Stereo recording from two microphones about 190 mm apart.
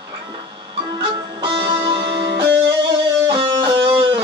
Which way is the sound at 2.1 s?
60° right (ahead or behind).